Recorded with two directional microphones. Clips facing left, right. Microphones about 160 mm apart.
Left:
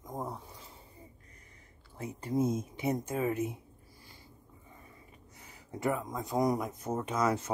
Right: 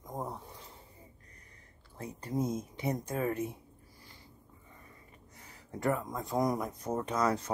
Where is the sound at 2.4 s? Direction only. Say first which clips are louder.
Left 2 dB; 25° left (ahead or behind).